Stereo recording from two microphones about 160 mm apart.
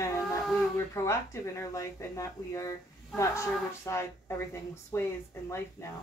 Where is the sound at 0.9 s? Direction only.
20° left (ahead or behind).